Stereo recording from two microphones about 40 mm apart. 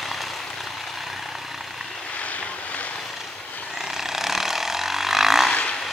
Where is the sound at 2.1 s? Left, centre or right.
Left.